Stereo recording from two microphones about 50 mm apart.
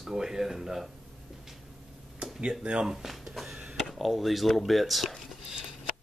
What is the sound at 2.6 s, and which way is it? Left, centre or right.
Speech, centre.